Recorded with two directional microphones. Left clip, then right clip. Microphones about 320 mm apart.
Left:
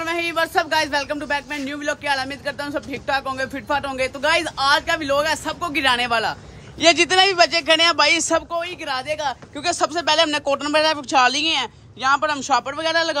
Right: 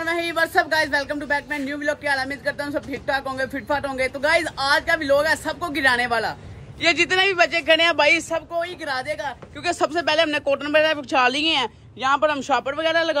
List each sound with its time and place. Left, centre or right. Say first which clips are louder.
0.0 s speech: even; centre